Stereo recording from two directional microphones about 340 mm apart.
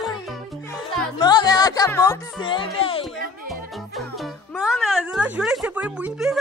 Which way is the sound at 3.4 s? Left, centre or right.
Centre.